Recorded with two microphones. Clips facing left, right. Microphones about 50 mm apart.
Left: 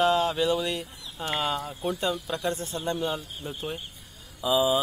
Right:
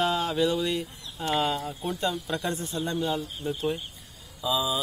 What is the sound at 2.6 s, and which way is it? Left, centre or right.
Speech, left.